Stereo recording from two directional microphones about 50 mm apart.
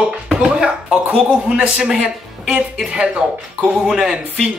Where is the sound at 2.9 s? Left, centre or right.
Right.